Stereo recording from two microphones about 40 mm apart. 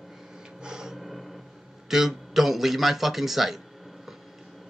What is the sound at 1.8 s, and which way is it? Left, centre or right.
A man's voice, centre.